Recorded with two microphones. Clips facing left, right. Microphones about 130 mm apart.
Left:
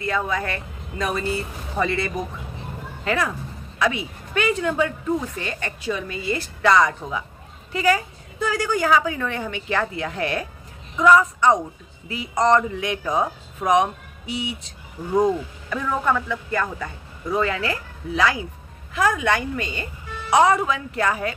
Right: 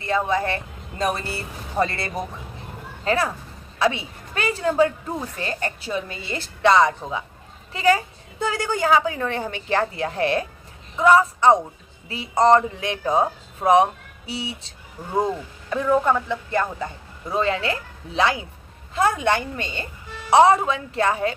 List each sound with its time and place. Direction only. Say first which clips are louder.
0.0 s a woman's voice: right 2 dB; 30° right (ahead or behind)
1.8 s a woman's voice: right 1 dB; 20° right (ahead or behind)
3.1 s a woman's voice: right 1 dB; 30° right (ahead or behind)
15.7 s a woman's voice: right 3 dB; 20° right (ahead or behind)